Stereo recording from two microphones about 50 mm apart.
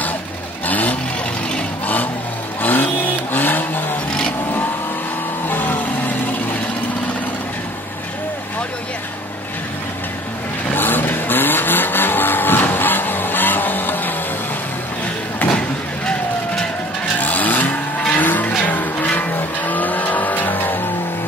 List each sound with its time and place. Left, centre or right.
0.7 s vehicle: left
2.6 s vehicle: left
5.5 s vehicle: left
10.7 s vehicle: left
17.2 s vehicle: left
18.6 s music: left
19.3 s vehicle: left